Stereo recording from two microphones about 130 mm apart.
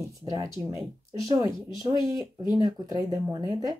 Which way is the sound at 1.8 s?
30° right (ahead or behind).